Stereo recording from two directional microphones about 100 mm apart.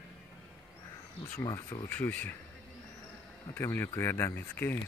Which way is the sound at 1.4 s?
35° left (ahead or behind).